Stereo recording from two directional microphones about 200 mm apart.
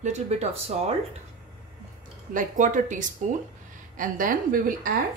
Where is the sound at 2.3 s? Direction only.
40° right (ahead or behind).